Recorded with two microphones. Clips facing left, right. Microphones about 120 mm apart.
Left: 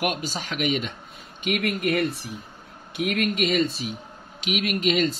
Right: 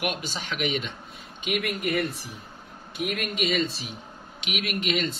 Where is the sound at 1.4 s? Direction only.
55° left (ahead or behind).